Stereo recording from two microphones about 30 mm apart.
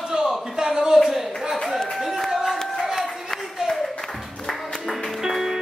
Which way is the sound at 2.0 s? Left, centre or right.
Centre.